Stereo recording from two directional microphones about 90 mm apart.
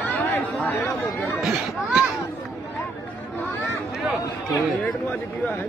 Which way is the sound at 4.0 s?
Centre (ahead or behind).